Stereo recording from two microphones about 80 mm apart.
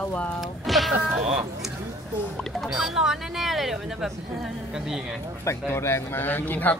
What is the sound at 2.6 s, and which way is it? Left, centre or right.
Speech, centre.